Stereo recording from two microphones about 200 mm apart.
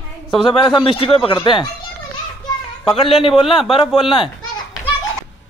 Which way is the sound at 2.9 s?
30° left (ahead or behind).